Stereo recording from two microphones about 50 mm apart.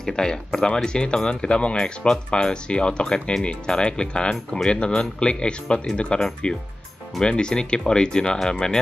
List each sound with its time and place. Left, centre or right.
0.0 s speech: centre